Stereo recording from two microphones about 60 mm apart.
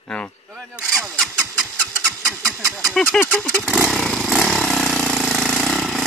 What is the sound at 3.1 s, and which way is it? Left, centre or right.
Speech, centre.